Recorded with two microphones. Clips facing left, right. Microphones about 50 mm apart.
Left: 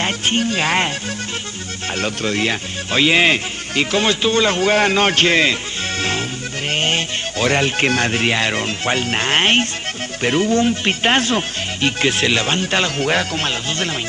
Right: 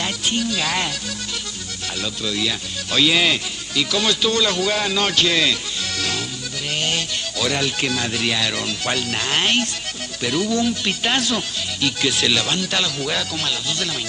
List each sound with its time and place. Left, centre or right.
0.0 s speech: left
2.0 s speech: left